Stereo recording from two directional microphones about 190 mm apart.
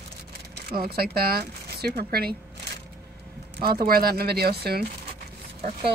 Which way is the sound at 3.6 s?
50° right (ahead or behind).